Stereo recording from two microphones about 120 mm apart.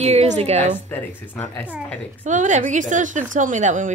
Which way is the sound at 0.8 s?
15° left (ahead or behind).